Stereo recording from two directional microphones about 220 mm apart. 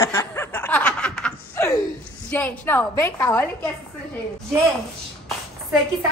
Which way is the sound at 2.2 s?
5° left (ahead or behind).